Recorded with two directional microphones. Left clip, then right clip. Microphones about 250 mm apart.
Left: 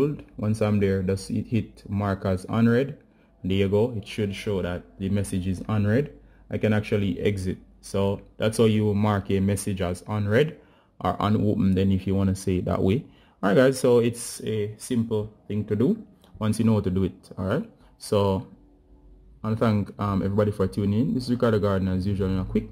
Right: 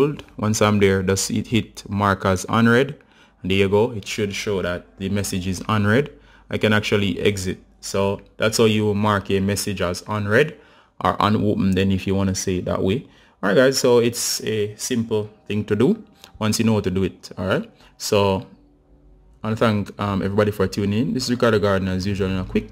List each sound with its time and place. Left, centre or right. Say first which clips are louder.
0.0 s speech: right 6 dB; centre
19.4 s speech: right 5 dB; centre